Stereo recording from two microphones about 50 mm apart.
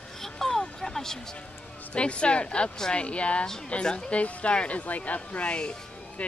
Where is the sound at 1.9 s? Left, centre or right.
Left.